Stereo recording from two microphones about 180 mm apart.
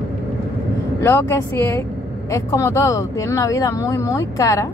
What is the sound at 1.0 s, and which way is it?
A woman's voice, 15° left (ahead or behind).